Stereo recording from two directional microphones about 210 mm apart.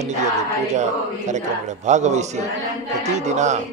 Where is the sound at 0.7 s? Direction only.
35° right (ahead or behind).